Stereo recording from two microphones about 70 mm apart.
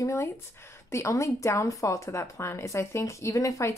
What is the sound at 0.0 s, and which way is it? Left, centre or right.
Speech, left.